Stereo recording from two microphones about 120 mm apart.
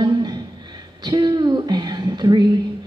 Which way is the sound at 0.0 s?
35° right (ahead or behind).